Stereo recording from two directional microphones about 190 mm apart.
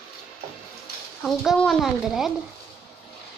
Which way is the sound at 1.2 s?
Centre (ahead or behind).